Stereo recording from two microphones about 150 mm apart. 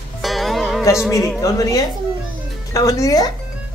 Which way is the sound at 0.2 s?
Centre (ahead or behind).